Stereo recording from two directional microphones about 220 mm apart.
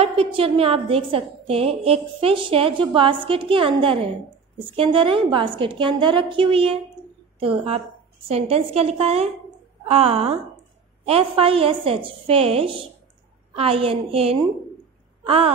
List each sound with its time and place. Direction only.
0.0 s a woman's voice: 25° right (ahead or behind)